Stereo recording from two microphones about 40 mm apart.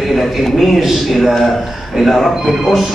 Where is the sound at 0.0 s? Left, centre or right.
Centre.